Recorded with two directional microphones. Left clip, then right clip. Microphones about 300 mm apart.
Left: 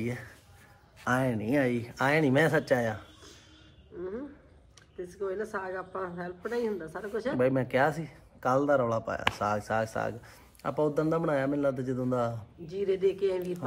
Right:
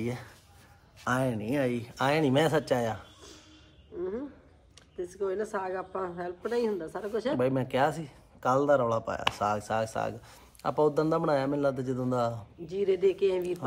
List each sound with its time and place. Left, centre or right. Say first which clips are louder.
0.0 s speech: even; centre
4.9 s speech: right 2 dB; right
7.3 s speech: left 3 dB; centre
12.6 s speech: right 2 dB; right